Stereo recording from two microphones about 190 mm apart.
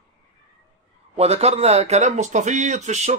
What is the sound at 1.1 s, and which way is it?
A man's voice, 35° right (ahead or behind).